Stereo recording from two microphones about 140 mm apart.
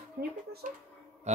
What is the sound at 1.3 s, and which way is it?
Mantra, 55° right (ahead or behind).